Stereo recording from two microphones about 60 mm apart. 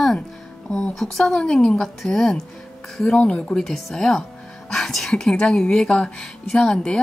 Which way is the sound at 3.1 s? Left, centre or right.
Centre.